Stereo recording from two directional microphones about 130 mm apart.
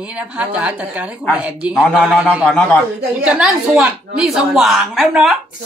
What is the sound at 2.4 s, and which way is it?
Speech, 10° left (ahead or behind).